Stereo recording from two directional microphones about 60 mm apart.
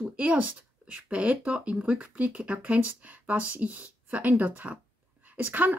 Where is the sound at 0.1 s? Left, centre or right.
Right.